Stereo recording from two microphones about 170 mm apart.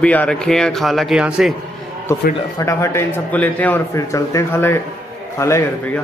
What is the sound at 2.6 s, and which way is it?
A man's voice, 15° left (ahead or behind).